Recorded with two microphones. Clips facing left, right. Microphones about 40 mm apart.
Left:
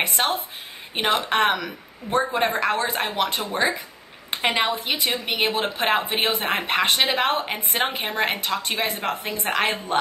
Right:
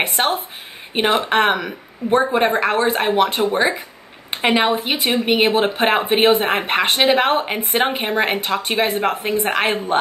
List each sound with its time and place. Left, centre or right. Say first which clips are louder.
0.2 s speech: right 5 dB; centre
0.9 s a woman's voice: right 5 dB; right